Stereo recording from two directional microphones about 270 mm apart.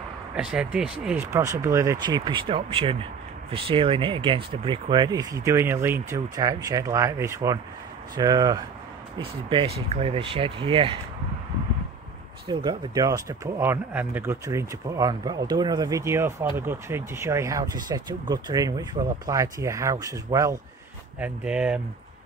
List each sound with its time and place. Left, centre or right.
0.4 s speech: centre
12.4 s speech: centre